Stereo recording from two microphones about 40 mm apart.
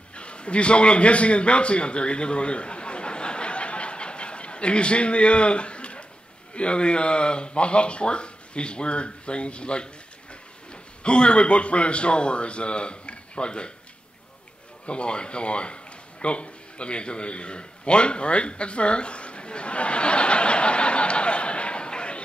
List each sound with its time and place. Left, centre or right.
0.1 s a sound: left
6.5 s a man's voice: left
14.9 s speech: left